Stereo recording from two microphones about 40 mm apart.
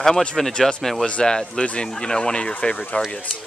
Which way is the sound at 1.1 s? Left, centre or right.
Centre.